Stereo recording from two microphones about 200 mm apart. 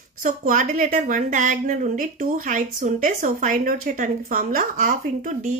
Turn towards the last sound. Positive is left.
turn(degrees=-40)  # may be behind; listen again after turning